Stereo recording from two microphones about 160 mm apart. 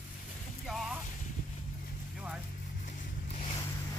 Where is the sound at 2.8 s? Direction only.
45° left (ahead or behind).